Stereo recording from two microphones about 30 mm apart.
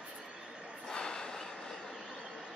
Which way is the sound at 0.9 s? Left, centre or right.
Left.